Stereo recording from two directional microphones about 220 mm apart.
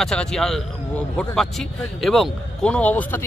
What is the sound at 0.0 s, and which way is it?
A man's voice, 5° left (ahead or behind).